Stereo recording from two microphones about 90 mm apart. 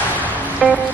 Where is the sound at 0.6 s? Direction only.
5° right (ahead or behind).